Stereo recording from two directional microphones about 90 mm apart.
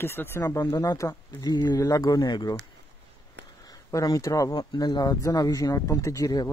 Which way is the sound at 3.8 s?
40° left (ahead or behind).